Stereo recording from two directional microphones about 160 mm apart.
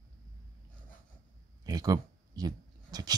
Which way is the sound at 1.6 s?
25° right (ahead or behind).